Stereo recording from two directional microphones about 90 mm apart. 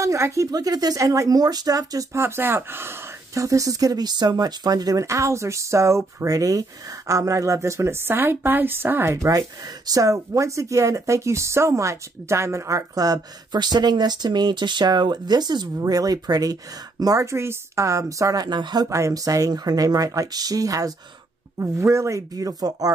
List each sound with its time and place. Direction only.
0.0 s speech: 35° right (ahead or behind)
2.1 s speech: 25° right (ahead or behind); by 18.9 s 55° right (ahead or behind)
18.9 s speech: 35° right (ahead or behind)